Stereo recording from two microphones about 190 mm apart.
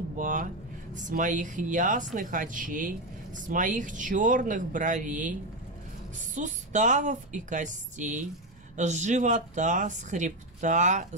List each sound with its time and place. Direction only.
0.2 s speech: 45° right (ahead or behind)